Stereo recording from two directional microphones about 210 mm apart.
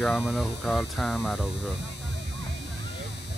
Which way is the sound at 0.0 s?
Centre (ahead or behind).